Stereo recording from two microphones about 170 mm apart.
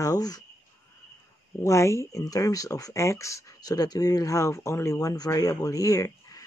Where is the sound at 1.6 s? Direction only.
15° left (ahead or behind).